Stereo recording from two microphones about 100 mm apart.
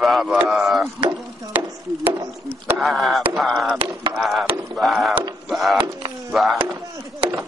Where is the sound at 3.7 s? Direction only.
55° right (ahead or behind).